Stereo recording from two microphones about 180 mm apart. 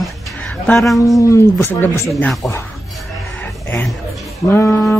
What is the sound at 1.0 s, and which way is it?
Speech, 15° left (ahead or behind).